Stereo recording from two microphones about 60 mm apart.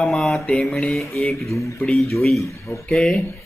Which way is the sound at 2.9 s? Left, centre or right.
Centre.